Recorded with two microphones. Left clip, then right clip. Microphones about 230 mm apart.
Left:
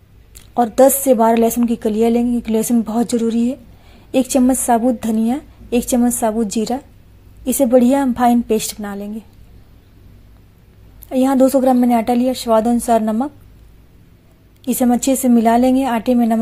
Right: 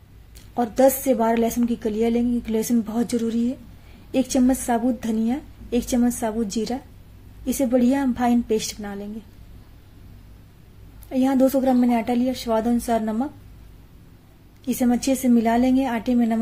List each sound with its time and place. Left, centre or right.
0.6 s a woman's voice: left
11.1 s a woman's voice: left
14.6 s a woman's voice: left